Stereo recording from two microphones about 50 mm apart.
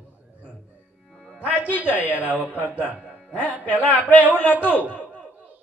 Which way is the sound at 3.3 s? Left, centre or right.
Left.